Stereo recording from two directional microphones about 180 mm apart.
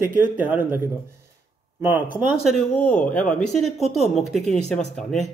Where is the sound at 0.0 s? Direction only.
10° right (ahead or behind).